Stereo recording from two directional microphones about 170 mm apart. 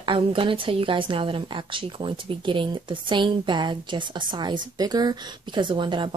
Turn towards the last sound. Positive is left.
turn(degrees=-30)  # may be behind; listen again after turning